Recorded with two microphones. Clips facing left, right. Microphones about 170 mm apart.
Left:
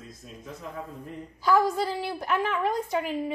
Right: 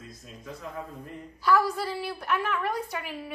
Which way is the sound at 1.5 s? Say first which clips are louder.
Left 2 dB; 20° left (ahead or behind).